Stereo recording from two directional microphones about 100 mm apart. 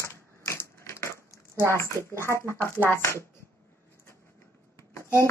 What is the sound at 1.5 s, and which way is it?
Speech, 30° right (ahead or behind).